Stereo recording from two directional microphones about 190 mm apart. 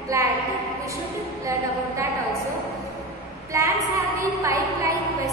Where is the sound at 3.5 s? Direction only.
15° right (ahead or behind).